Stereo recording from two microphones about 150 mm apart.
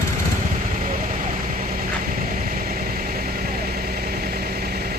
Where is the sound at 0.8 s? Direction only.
55° right (ahead or behind); by 5.0 s 90° right.